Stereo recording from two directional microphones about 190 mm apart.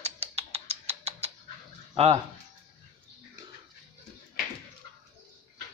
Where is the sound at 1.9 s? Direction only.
30° right (ahead or behind).